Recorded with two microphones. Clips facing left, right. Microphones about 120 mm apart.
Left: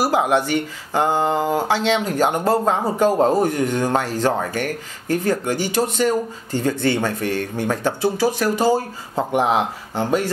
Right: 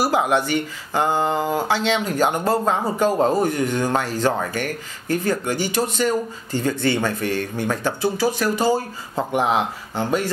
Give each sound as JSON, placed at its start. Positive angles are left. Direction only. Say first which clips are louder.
{"t": 0.0, "sound": "speech", "louder": "left 1 dB", "side_deg": 50}
{"t": 3.2, "sound": "speech", "louder": "left 1 dB", "side_deg": 25}
{"t": 3.4, "sound": "speech", "louder": "left 1 dB", "side_deg": 45}
{"t": 6.5, "sound": "speech", "louder": "left 1 dB", "side_deg": 45}